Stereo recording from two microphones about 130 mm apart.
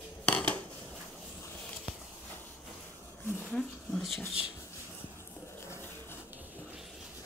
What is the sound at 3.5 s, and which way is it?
Speech, 5° left (ahead or behind).